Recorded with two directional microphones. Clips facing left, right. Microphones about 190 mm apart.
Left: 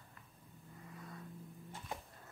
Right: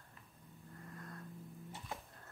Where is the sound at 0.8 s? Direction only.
Centre (ahead or behind).